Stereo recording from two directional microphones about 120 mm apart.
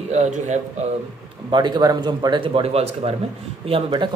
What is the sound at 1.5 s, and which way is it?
A man's voice, 40° right (ahead or behind).